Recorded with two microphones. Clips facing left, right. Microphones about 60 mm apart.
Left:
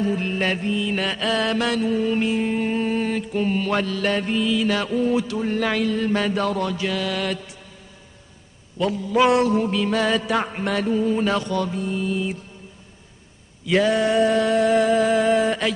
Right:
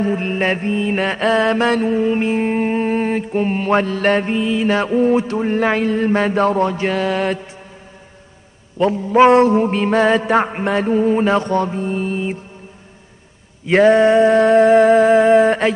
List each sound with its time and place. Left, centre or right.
0.0 s mantra: right
8.7 s mantra: right
13.7 s mantra: right